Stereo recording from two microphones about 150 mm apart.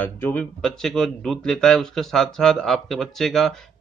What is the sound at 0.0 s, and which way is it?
A man's voice, 10° left (ahead or behind).